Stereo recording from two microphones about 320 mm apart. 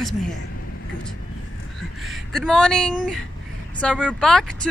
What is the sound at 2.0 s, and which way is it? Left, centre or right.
Speech, centre.